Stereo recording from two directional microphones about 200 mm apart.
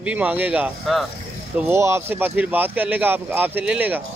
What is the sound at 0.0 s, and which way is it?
Speech, 5° right (ahead or behind).